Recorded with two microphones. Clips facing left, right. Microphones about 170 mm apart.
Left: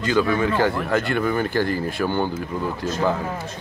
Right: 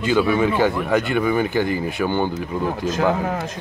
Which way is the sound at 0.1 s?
15° right (ahead or behind).